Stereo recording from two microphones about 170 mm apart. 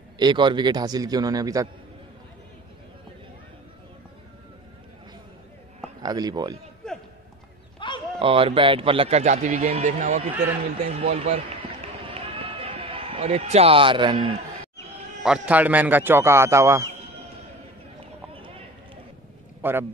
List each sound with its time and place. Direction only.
0.2 s a man's voice: 25° right (ahead or behind)
6.0 s a man's voice: 25° right (ahead or behind)
6.8 s a sound: 5° left (ahead or behind)
7.8 s a sound: 30° left (ahead or behind)
8.2 s a man's voice: 35° right (ahead or behind)
12.1 s a sound: 35° right (ahead or behind)
15.2 s a man's voice: 5° right (ahead or behind)
18.3 s run: 35° right (ahead or behind)
19.6 s a man's voice: 10° right (ahead or behind)